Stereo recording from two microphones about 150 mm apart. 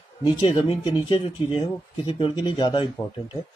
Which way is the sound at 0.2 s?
25° left (ahead or behind).